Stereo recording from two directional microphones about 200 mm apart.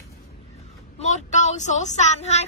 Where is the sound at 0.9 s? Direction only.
35° left (ahead or behind).